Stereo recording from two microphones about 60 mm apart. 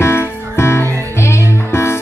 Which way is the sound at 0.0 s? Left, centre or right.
Left.